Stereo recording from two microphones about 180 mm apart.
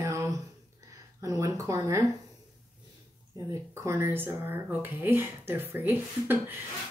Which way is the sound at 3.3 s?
15° right (ahead or behind).